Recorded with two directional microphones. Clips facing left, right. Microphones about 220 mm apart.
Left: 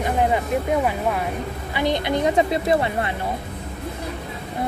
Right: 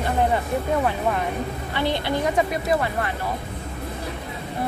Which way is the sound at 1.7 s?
15° left (ahead or behind).